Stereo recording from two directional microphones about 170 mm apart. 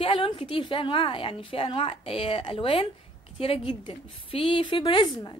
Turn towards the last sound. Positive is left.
turn(degrees=30)  # may be behind; listen again after turning